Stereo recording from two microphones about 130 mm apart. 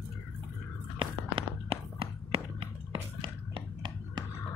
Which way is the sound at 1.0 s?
45° right (ahead or behind).